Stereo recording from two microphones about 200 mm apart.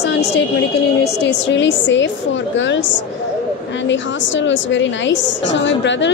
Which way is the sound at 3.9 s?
65° left (ahead or behind).